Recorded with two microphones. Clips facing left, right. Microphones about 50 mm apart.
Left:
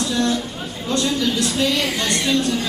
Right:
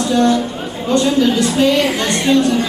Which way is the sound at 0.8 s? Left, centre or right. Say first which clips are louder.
Right 7 dB; right.